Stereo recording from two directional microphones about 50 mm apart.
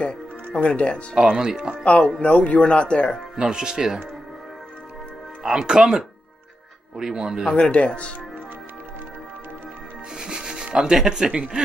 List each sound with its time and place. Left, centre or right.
0.0 s speech: left
1.1 s speech: centre
1.9 s speech: centre
3.3 s speech: centre
5.4 s speech: centre
7.4 s speech: centre
10.1 s rub: centre